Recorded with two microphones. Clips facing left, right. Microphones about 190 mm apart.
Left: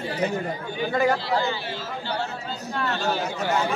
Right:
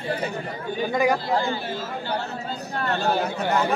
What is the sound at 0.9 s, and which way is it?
Speech, 15° right (ahead or behind).